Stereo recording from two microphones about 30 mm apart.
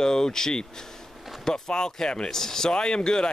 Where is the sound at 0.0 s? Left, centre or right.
Left.